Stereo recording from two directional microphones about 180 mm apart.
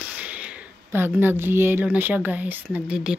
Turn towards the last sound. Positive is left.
turn(degrees=-5)  # may be behind; listen again after turning